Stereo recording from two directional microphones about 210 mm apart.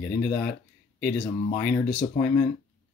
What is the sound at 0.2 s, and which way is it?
Speech, 5° left (ahead or behind).